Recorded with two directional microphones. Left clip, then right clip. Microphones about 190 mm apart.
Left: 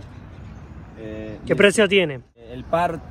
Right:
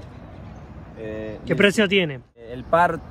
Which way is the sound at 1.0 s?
50° right (ahead or behind).